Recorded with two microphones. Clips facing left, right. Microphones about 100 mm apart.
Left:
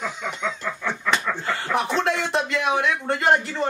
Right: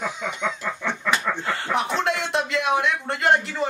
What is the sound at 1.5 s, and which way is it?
Speech, centre (ahead or behind).